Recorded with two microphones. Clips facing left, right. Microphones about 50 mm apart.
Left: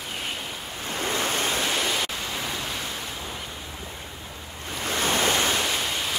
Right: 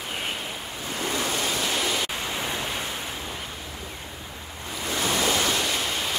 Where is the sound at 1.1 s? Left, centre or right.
Left.